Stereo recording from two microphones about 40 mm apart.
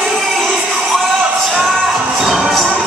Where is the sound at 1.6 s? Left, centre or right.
Centre.